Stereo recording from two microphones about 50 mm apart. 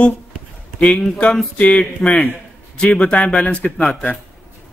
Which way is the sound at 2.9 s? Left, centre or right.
Left.